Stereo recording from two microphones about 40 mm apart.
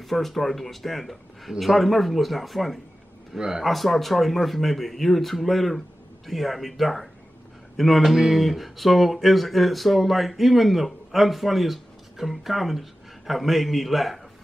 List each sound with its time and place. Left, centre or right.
0.0 s speech: centre
3.3 s a man's voice: centre
3.6 s speech: centre